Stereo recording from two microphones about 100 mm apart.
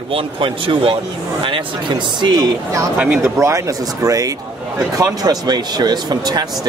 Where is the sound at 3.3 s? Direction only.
30° right (ahead or behind).